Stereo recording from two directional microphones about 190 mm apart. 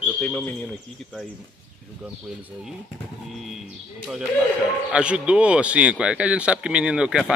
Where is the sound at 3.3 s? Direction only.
Centre (ahead or behind).